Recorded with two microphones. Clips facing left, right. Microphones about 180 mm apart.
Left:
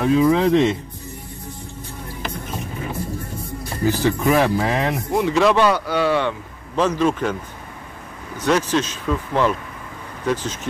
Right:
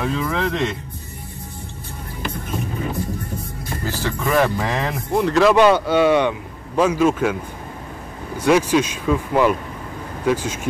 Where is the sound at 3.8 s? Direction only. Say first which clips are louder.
Left 7 dB; 15° left (ahead or behind).